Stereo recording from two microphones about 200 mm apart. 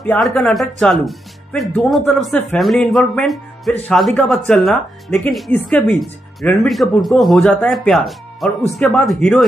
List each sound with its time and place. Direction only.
0.0 s speech: 5° left (ahead or behind)